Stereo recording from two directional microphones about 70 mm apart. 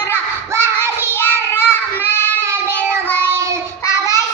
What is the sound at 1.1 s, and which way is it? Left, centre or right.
Child singing, left.